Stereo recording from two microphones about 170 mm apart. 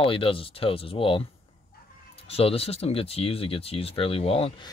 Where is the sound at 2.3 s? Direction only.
35° left (ahead or behind).